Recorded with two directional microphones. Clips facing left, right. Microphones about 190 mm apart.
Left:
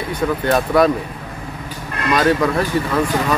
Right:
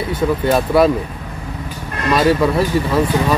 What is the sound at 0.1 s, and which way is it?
Speech, 5° right (ahead or behind).